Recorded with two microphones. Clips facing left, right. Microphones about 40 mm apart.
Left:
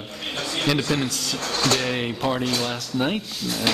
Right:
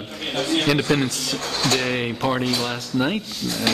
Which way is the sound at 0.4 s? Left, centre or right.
Right.